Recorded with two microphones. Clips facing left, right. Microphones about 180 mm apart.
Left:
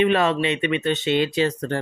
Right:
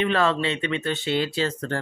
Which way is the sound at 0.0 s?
20° left (ahead or behind).